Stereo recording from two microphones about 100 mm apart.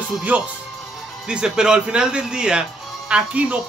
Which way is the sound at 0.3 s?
15° right (ahead or behind).